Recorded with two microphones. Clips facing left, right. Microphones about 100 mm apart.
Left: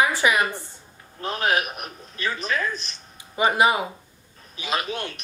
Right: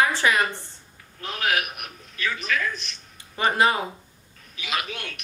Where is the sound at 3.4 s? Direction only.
15° left (ahead or behind).